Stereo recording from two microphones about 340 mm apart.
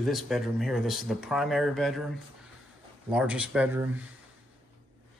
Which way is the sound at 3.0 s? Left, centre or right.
Centre.